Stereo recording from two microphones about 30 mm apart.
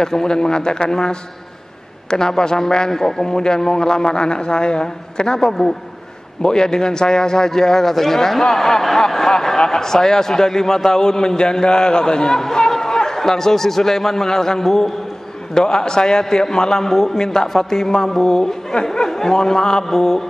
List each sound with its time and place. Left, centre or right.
0.0 s a man's voice: left
15.5 s a man's voice: left